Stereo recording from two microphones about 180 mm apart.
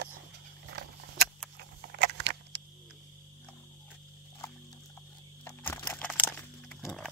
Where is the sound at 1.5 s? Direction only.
65° right (ahead or behind).